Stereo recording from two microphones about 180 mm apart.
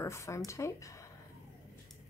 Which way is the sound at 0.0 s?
15° left (ahead or behind).